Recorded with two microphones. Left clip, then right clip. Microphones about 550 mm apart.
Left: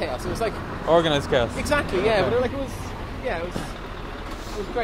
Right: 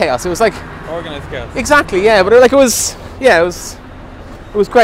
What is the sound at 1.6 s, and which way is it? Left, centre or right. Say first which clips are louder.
Speech: right 12 dB; right.